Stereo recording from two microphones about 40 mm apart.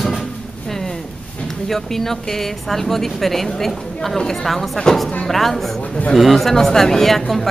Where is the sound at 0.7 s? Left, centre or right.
Centre.